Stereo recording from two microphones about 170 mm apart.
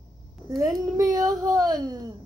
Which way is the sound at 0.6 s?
20° right (ahead or behind).